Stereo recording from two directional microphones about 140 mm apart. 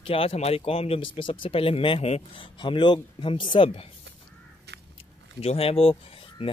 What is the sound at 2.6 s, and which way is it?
Speech, 35° left (ahead or behind).